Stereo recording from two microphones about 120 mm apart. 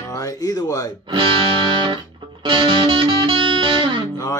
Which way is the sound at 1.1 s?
45° right (ahead or behind).